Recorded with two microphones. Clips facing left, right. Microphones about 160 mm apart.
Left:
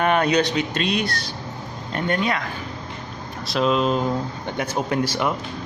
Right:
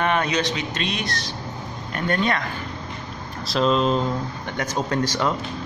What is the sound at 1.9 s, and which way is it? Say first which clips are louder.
Speech: left 1 dB; 25° left (ahead or behind).